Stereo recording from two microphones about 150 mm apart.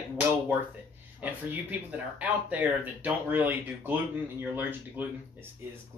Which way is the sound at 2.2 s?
10° right (ahead or behind).